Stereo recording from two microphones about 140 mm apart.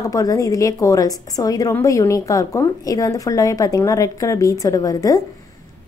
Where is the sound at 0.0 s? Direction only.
25° left (ahead or behind).